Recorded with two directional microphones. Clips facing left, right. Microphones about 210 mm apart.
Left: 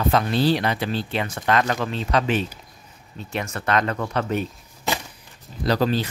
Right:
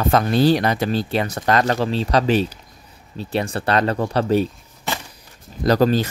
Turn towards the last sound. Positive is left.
turn(degrees=-45)  # may be behind; listen again after turning